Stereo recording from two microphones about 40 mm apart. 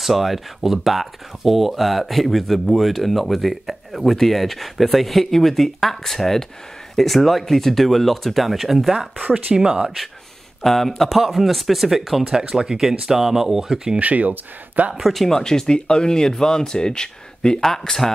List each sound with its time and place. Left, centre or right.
0.0 s speech: centre
9.2 s speech: right
10.6 s speech: centre
13.9 s speech: right
15.0 s speech: centre
17.6 s speech: centre